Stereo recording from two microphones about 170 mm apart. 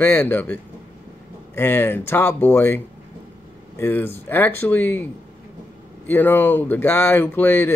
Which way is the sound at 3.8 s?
15° left (ahead or behind).